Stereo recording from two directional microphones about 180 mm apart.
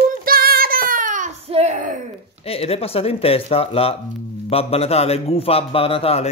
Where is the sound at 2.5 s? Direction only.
35° left (ahead or behind).